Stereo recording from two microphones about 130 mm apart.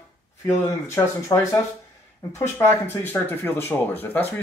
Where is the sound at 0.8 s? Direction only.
20° left (ahead or behind).